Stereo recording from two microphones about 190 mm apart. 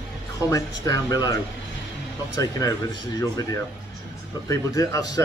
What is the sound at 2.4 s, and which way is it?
Speech, 20° left (ahead or behind).